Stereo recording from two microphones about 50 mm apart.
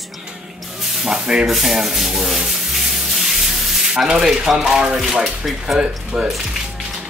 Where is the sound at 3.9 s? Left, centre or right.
Centre.